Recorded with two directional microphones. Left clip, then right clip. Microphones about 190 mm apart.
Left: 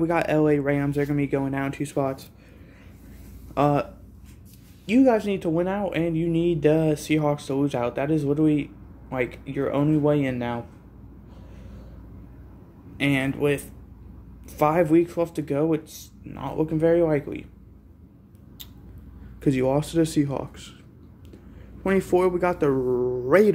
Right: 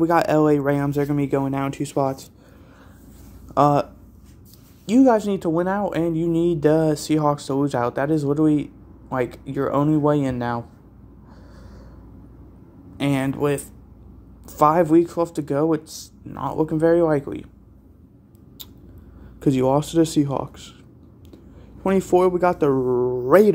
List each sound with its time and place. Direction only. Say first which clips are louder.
0.0 s speech: right 4 dB; 30° right (ahead or behind)
3.5 s speech: right 5 dB; 25° right (ahead or behind)
4.8 s speech: right 3 dB; 25° right (ahead or behind)
12.9 s speech: right 1 dB; 25° right (ahead or behind)
19.4 s speech: right 4 dB; 25° right (ahead or behind)
21.8 s speech: right 3 dB; 20° right (ahead or behind)